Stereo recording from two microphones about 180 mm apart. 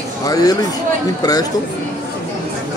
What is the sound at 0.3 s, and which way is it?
Speech, 20° left (ahead or behind).